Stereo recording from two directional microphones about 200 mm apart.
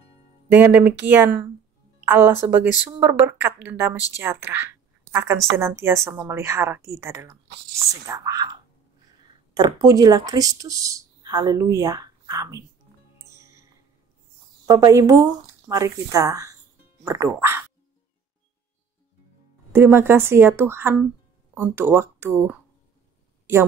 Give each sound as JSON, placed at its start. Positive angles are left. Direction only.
{"t": 0.5, "sound": "speech", "side_deg": -10}
{"t": 9.5, "sound": "speech", "side_deg": -20}
{"t": 13.2, "sound": "music", "side_deg": -15}
{"t": 14.7, "sound": "speech", "side_deg": -15}
{"t": 19.7, "sound": "speech", "side_deg": -10}